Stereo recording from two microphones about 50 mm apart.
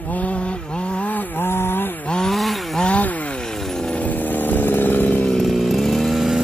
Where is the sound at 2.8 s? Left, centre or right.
Left.